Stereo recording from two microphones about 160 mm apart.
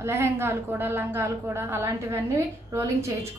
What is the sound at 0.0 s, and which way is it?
A woman's voice, 15° right (ahead or behind).